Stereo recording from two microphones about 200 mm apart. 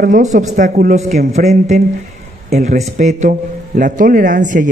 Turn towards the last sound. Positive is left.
turn(degrees=-40)  # may be behind; listen again after turning